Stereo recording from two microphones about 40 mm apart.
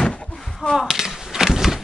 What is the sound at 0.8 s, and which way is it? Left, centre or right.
Skateboard, centre.